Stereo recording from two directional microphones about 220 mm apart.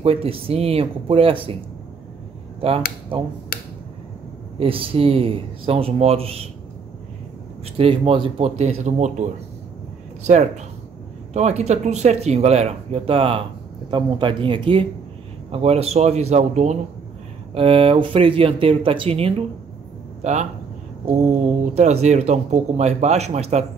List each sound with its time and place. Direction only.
0.0 s speech: 25° right (ahead or behind)
3.1 s speech: 25° right (ahead or behind)
4.6 s speech: 25° right (ahead or behind)
7.6 s speech: 25° right (ahead or behind)